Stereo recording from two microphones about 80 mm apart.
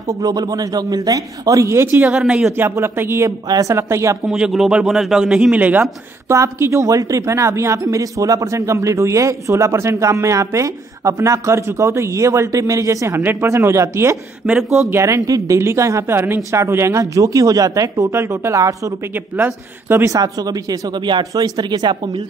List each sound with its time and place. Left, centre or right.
0.1 s a man's voice: right
2.0 s a man's voice: centre
2.7 s a woman's voice: right
3.3 s a man's voice: right
3.7 s a woman's voice: right
4.3 s a man's voice: centre
6.2 s a woman's voice: right
13.2 s speech: right
13.5 s a woman's voice: right
14.4 s a man's voice: centre
14.9 s a woman's voice: right
19.1 s speech: right
20.1 s speech: right